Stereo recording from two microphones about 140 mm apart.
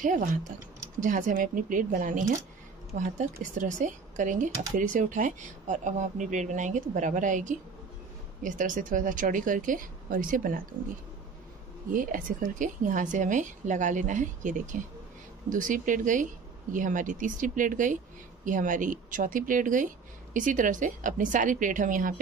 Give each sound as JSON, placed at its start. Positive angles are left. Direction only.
{"t": 0.0, "sound": "speech", "side_deg": -70}
{"t": 11.9, "sound": "speech", "side_deg": -70}